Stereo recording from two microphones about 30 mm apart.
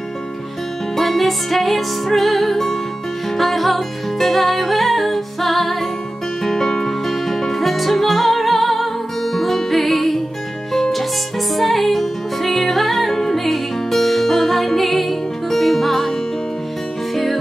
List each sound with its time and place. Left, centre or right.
0.9 s music: centre
6.4 s music: centre
17.1 s music: centre